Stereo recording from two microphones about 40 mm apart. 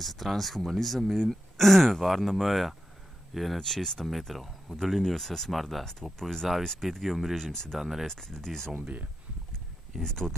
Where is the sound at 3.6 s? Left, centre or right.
Centre.